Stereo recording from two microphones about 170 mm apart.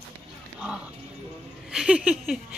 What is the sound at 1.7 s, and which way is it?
Speech, 5° right (ahead or behind).